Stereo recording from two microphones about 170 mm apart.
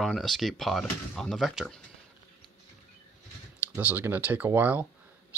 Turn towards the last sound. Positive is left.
turn(degrees=-10)  # may be behind; listen again after turning